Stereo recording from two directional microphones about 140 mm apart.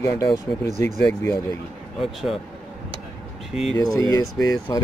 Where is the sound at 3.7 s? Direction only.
25° left (ahead or behind).